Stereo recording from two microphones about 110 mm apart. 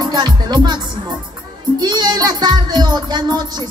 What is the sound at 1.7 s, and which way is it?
Music, 40° right (ahead or behind).